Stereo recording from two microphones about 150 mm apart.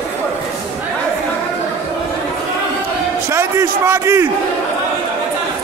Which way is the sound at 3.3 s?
15° right (ahead or behind).